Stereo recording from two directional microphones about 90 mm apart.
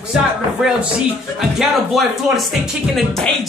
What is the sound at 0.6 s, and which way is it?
Speech, 5° right (ahead or behind).